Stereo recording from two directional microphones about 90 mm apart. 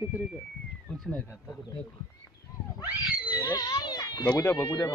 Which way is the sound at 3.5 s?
45° left (ahead or behind).